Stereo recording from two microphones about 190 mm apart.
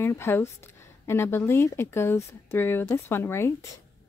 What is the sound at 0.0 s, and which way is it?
Speech, 10° left (ahead or behind).